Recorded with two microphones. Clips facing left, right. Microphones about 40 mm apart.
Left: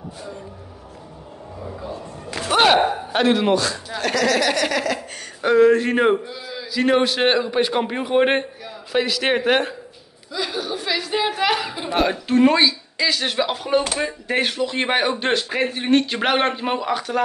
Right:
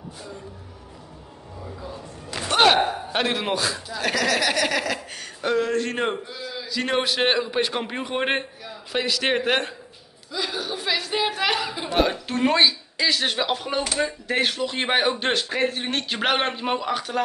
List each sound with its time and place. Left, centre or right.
2.5 s a sound: centre
3.1 s a man's voice: centre
5.4 s a man's voice: centre
13.9 s speech: centre
14.3 s a man's voice: centre